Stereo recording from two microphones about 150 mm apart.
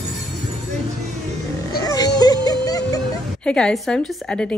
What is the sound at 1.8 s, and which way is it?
Music, 25° left (ahead or behind).